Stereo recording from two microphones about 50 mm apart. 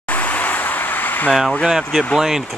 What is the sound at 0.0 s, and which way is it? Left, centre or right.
Vehicle, left.